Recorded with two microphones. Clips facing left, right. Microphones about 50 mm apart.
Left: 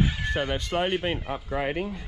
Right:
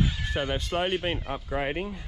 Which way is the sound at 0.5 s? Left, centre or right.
Left.